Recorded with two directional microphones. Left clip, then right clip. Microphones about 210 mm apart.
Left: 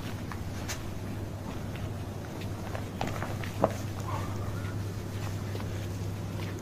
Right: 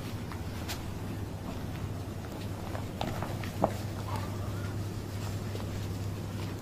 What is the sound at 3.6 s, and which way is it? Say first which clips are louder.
Walk: left 2 dB; 15° left (ahead or behind).